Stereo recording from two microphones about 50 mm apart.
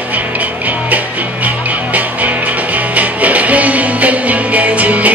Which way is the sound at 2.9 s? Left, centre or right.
Right.